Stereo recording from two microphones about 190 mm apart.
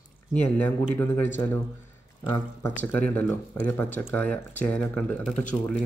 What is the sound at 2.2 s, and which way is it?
Speech, 20° left (ahead or behind).